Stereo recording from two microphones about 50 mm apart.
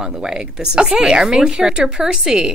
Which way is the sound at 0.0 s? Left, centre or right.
Centre.